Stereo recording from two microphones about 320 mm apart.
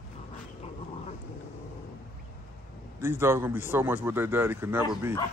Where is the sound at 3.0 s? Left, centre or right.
Centre.